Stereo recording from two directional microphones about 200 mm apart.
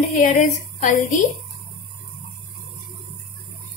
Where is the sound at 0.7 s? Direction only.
40° left (ahead or behind).